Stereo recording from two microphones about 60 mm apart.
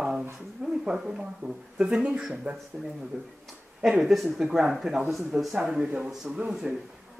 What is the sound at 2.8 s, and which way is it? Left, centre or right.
Speech, right.